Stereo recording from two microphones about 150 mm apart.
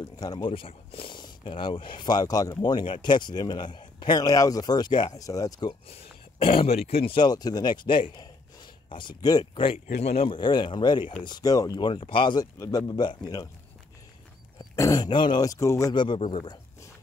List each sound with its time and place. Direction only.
0.2 s speech: 30° left (ahead or behind)
6.4 s speech: 40° left (ahead or behind)
9.9 s speech: 45° left (ahead or behind); by 11.9 s 25° left (ahead or behind)
11.9 s speech: 35° left (ahead or behind)
14.6 s speech: 25° left (ahead or behind)